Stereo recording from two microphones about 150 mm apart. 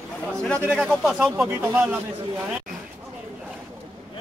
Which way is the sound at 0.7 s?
5° right (ahead or behind).